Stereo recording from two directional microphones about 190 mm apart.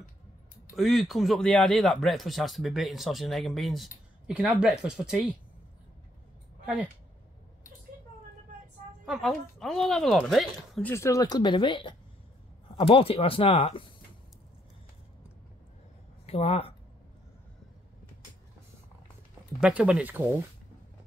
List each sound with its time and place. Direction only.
0.7 s speech: centre (ahead or behind)
6.6 s speech: 5° right (ahead or behind)
9.0 s speech: centre (ahead or behind); by 13.8 s 30° left (ahead or behind)
16.3 s speech: 35° left (ahead or behind)
19.6 s speech: 5° right (ahead or behind)